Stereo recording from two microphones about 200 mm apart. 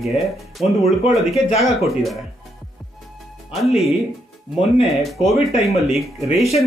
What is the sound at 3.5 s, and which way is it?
Speech, centre (ahead or behind).